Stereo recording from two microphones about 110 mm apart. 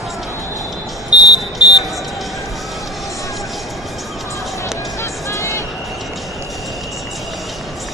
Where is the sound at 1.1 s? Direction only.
10° right (ahead or behind).